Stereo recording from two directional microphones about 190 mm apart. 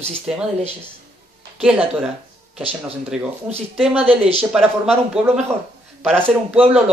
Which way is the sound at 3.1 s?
5° right (ahead or behind).